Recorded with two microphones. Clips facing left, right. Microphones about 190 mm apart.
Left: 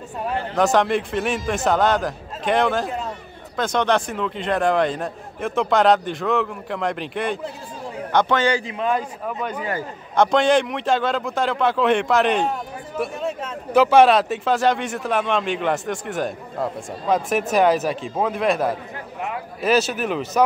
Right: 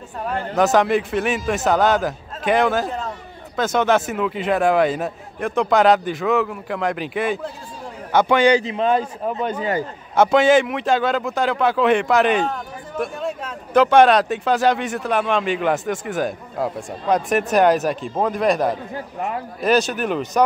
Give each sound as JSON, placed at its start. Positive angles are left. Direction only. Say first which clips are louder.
{"t": 0.6, "sound": "a man's voice", "louder": "right 2 dB", "side_deg": 0}
{"t": 10.1, "sound": "speech", "louder": "right 2 dB", "side_deg": -5}